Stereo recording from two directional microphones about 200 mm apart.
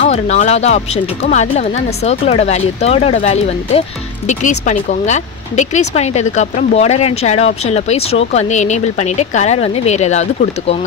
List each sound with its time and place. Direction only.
0.0 s speech: 35° left (ahead or behind)